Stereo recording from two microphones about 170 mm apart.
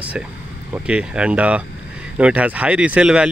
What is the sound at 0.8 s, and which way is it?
Speech, 5° right (ahead or behind).